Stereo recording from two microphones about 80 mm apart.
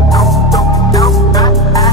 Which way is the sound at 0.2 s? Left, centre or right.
Centre.